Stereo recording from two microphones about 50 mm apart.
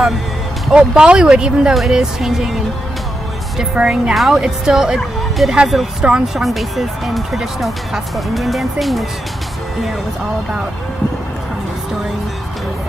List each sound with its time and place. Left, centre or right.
0.7 s speech: centre
3.7 s speech: centre
4.1 s speech: centre
4.4 s speech: centre